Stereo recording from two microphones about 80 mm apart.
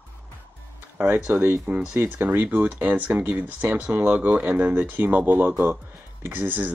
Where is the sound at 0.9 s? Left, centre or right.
Right.